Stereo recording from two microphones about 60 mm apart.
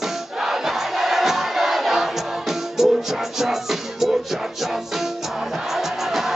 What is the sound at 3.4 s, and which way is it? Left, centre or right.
Music, centre.